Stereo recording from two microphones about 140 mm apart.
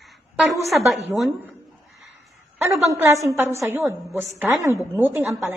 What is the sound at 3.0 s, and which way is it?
A woman's voice, 20° right (ahead or behind).